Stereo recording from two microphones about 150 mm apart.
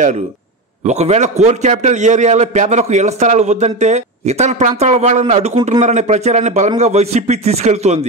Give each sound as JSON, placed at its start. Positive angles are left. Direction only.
{"t": 0.8, "sound": "a man's voice", "side_deg": -50}